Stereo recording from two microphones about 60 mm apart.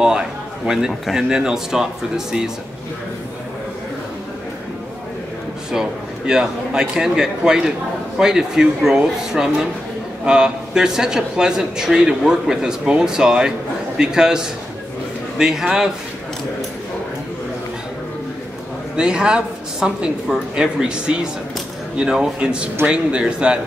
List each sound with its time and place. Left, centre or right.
0.7 s speech: centre
5.7 s speech: centre
18.9 s speech: centre